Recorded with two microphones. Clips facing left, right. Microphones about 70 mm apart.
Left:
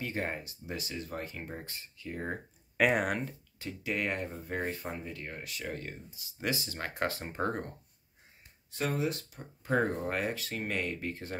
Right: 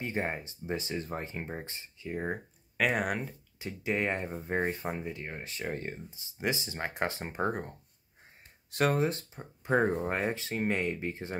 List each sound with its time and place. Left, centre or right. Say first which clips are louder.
0.0 s speech: right 2 dB; right
2.8 s speech: left 2 dB; centre
3.5 s speech: right 3 dB; right
8.9 s speech: right 3 dB; right